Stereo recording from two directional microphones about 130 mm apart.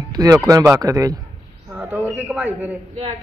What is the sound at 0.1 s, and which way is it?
Speech, 30° right (ahead or behind).